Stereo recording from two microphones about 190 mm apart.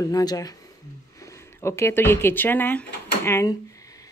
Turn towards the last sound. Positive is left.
turn(degrees=15)  # may be behind; listen again after turning